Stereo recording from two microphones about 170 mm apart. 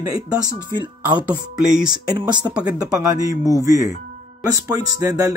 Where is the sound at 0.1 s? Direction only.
20° right (ahead or behind).